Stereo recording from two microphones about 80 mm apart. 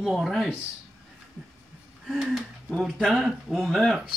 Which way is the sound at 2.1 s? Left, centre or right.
Centre.